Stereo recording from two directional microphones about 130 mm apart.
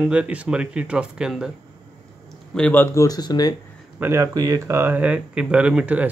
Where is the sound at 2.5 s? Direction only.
10° left (ahead or behind); by 3.5 s 30° left (ahead or behind).